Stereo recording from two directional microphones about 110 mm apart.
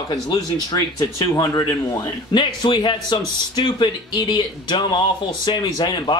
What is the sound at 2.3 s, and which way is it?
A man's voice, 45° left (ahead or behind).